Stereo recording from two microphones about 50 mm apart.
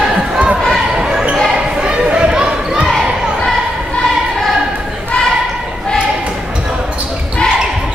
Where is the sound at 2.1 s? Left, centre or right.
Centre.